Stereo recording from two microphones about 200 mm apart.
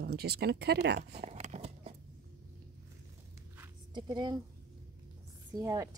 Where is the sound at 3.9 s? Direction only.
20° right (ahead or behind).